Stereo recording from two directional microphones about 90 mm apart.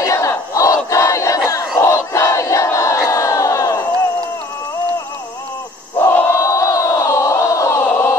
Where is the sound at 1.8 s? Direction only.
30° left (ahead or behind).